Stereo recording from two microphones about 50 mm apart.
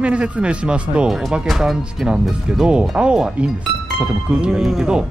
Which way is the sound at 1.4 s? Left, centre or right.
Centre.